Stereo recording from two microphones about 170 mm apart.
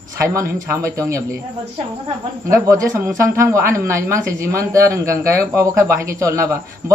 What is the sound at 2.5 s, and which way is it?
Speech, 20° right (ahead or behind).